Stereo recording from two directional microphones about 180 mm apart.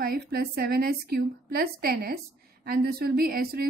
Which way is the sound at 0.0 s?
55° right (ahead or behind).